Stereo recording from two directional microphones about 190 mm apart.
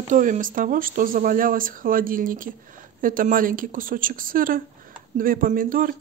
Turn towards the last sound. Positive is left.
turn(degrees=-45)  # may be behind; listen again after turning